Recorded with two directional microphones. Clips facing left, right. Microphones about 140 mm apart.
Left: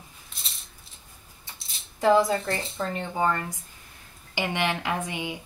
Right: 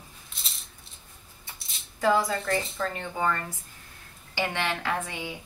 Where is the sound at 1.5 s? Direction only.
25° left (ahead or behind).